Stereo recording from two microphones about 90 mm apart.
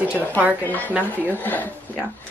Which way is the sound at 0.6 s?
20° left (ahead or behind).